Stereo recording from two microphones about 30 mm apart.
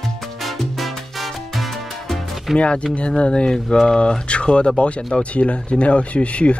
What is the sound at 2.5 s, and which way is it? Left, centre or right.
Speech, left.